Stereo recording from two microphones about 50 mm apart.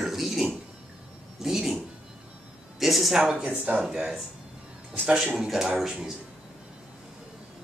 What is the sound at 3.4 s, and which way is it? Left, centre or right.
Speech, right.